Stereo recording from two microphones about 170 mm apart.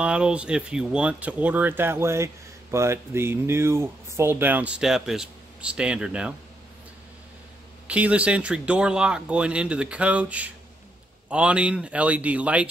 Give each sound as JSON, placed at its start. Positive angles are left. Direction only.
{"t": 0.0, "sound": "speech", "side_deg": -5}
{"t": 7.8, "sound": "speech", "side_deg": -5}